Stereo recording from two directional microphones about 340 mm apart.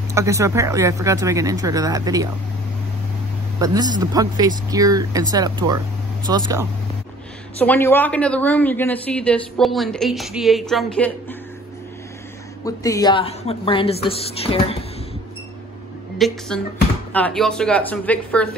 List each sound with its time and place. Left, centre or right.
0.1 s speech: centre
3.5 s speech: centre
7.5 s a woman's voice: centre
12.6 s speech: centre
16.2 s a woman's voice: centre